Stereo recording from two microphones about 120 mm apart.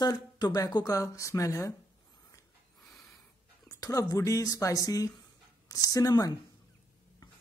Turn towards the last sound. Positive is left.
turn(degrees=30)  # may be behind; listen again after turning